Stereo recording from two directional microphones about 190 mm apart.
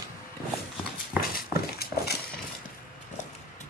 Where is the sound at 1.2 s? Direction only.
55° left (ahead or behind).